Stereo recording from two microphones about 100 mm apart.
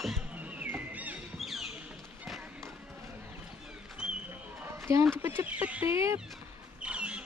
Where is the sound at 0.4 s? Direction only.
15° right (ahead or behind).